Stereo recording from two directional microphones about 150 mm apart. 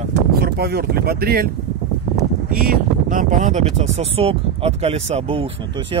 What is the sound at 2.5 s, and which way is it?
Speech, 75° right (ahead or behind).